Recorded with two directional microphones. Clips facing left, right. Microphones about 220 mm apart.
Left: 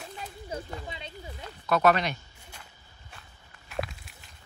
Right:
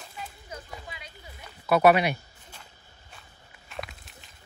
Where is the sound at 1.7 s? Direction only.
10° right (ahead or behind).